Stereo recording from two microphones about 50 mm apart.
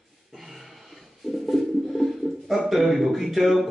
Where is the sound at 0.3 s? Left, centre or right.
Centre.